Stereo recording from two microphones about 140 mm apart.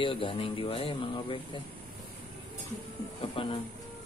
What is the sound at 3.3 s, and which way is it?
Speech, 40° left (ahead or behind).